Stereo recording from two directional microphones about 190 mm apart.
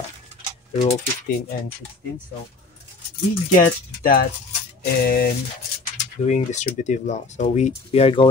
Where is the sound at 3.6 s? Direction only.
50° left (ahead or behind).